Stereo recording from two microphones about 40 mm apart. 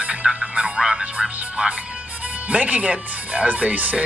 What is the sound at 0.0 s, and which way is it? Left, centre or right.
Music, right.